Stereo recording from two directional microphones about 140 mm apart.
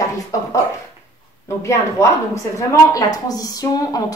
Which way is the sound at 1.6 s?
20° left (ahead or behind).